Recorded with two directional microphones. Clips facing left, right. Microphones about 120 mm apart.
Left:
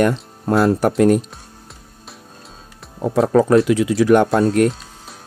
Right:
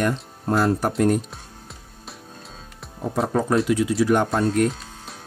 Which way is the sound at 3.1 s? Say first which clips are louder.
Left 8 dB; 80° left.